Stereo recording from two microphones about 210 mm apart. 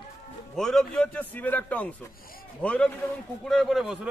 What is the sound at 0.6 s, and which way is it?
A man's voice, centre (ahead or behind).